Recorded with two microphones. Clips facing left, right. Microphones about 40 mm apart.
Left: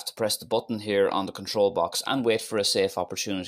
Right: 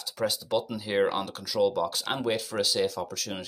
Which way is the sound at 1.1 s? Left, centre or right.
Centre.